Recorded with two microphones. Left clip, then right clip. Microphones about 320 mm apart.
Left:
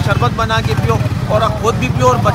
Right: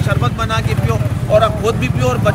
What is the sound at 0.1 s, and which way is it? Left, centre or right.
Vehicle, centre.